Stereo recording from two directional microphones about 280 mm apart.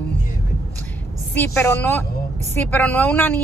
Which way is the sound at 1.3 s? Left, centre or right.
Centre.